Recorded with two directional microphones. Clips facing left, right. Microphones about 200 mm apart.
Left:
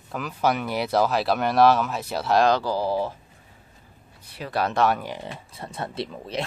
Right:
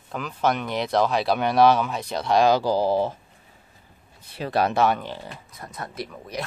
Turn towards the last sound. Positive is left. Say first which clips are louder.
# left 3 dB
turn(degrees=25)  # may be behind; listen again after turning